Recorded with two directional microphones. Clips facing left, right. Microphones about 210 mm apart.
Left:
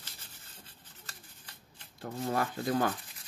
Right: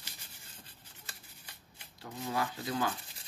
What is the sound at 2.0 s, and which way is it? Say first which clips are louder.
Speech: left 3 dB; 55° left (ahead or behind).